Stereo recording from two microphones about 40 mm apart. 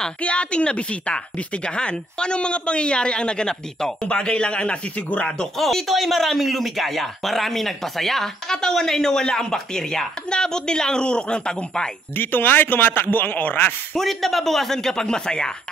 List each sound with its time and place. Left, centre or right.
0.2 s speech: left
5.6 s speech: centre; by 11.9 s left
12.2 s a man's voice: left
13.9 s speech: centre